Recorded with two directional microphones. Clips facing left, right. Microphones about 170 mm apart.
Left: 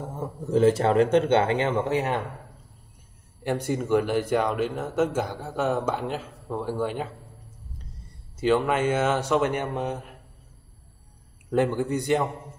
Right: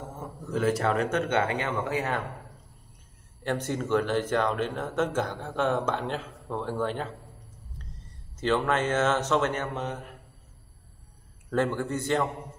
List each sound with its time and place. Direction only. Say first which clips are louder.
0.5 s speech: left 6 dB; 25° left (ahead or behind)
3.4 s speech: left 3 dB; 10° left (ahead or behind)
8.4 s speech: left 3 dB; 10° left (ahead or behind)
11.5 s speech: left 4 dB; 15° left (ahead or behind)